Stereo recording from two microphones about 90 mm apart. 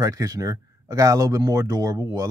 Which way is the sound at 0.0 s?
40° right (ahead or behind).